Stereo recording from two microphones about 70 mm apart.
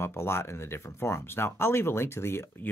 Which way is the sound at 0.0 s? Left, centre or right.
Left.